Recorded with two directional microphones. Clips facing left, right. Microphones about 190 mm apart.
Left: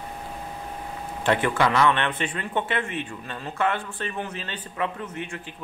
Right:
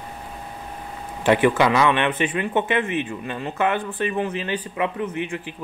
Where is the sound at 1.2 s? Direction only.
15° right (ahead or behind).